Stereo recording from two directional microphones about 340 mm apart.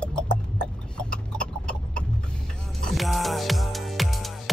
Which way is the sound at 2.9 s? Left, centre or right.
Centre.